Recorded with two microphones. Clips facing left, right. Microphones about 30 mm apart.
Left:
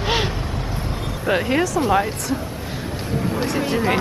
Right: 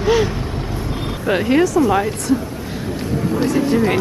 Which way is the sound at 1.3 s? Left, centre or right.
Centre.